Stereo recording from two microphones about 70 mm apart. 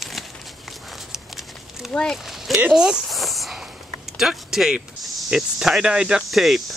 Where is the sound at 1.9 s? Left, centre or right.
Centre.